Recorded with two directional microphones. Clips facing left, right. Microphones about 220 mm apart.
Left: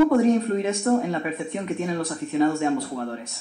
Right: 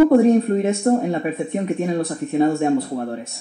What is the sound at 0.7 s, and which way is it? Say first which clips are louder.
Speech: right 4 dB; 25° right (ahead or behind).